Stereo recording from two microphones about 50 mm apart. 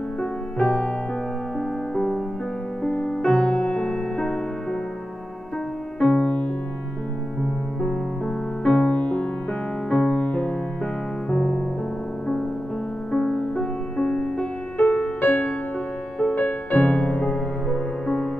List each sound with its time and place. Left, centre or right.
0.2 s music: centre
2.0 s music: centre
5.9 s music: left
8.7 s music: left
11.2 s music: centre
13.1 s music: centre
15.1 s music: left
17.6 s music: centre